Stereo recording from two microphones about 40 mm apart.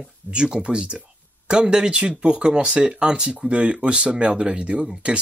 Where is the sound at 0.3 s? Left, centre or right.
Right.